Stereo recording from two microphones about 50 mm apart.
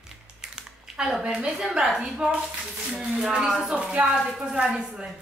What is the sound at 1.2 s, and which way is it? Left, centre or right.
Speech, centre.